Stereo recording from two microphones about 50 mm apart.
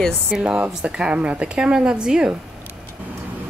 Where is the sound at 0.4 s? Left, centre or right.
Right.